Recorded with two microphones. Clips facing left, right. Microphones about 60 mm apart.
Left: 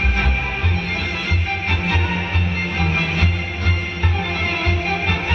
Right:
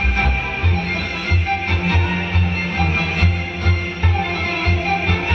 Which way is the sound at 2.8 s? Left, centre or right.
Right.